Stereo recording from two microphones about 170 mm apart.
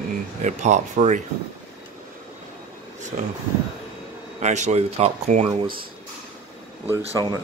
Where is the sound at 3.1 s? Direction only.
45° right (ahead or behind).